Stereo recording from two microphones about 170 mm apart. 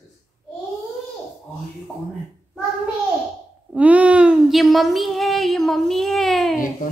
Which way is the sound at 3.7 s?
10° right (ahead or behind).